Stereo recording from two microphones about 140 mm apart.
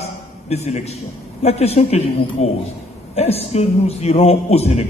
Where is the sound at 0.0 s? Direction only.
50° left (ahead or behind).